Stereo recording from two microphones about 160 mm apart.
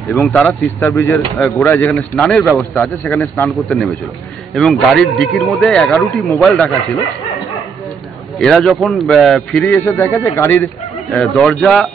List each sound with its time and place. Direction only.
0.1 s speech: 5° left (ahead or behind)
0.8 s a man's voice: 15° left (ahead or behind)
8.4 s speech: 5° left (ahead or behind)
11.1 s speech: centre (ahead or behind)